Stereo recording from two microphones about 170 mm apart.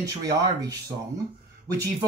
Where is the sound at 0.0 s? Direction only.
20° right (ahead or behind).